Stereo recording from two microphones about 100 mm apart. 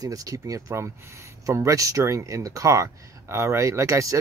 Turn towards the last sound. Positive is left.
turn(degrees=-30)  # may be behind; listen again after turning